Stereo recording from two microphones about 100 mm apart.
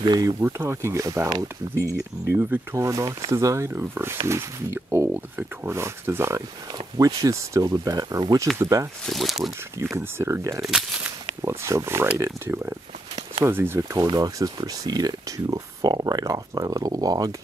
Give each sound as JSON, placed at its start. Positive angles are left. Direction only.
{"t": 0.0, "sound": "speech", "side_deg": -45}
{"t": 0.4, "sound": "speech", "side_deg": -25}
{"t": 7.0, "sound": "speech", "side_deg": -35}
{"t": 9.0, "sound": "speech", "side_deg": 0}
{"t": 9.9, "sound": "speech", "side_deg": -25}
{"t": 14.1, "sound": "speech", "side_deg": -40}